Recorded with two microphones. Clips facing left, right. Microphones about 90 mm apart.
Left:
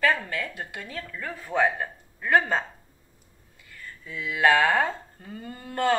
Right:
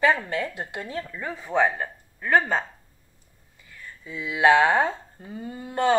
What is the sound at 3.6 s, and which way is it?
Speech, 5° right (ahead or behind).